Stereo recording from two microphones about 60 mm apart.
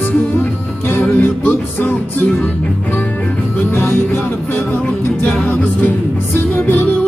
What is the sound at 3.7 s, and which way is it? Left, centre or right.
Music, left.